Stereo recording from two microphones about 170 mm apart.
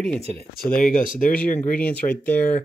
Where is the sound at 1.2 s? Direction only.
10° left (ahead or behind).